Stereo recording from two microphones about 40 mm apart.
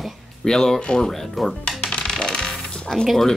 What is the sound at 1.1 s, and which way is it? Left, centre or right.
Speech, centre.